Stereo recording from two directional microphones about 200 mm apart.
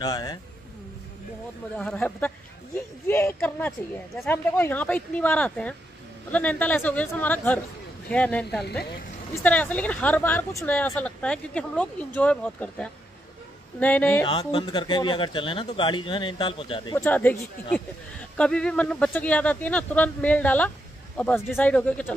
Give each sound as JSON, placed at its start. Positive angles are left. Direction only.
{"t": 0.0, "sound": "speech", "side_deg": 20}
{"t": 1.8, "sound": "speech", "side_deg": 5}
{"t": 14.2, "sound": "speech", "side_deg": 25}
{"t": 16.9, "sound": "speech", "side_deg": 10}